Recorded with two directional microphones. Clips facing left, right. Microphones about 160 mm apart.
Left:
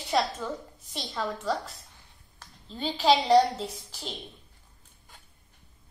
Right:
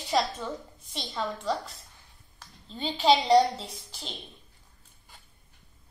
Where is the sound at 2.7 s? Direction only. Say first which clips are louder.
Even; 5° left (ahead or behind).